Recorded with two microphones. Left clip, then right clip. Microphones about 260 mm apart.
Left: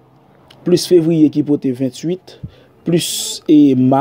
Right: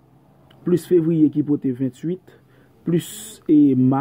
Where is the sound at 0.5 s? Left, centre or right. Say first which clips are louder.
Left 6 dB; centre.